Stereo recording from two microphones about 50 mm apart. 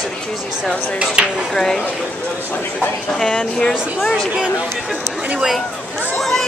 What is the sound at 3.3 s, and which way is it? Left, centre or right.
Speech, left.